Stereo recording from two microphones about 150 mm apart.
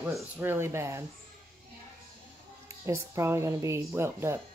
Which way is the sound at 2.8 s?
20° right (ahead or behind).